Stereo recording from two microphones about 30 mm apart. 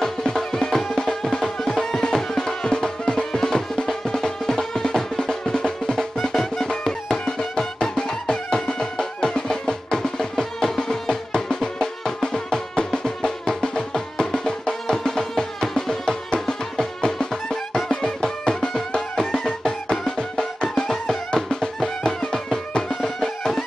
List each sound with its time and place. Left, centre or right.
0.0 s music: centre
20.8 s music: centre